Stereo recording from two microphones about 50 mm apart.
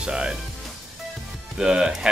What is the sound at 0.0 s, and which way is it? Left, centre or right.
Speech, centre.